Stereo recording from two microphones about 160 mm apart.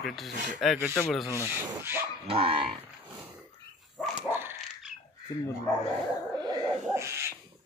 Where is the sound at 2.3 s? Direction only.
35° right (ahead or behind).